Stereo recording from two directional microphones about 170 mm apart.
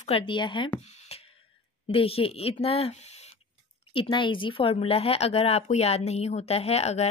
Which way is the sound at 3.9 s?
30° left (ahead or behind).